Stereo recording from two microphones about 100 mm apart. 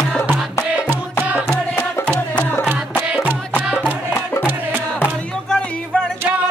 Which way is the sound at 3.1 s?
10° right (ahead or behind).